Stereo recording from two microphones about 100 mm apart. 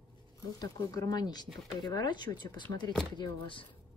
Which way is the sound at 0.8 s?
35° left (ahead or behind).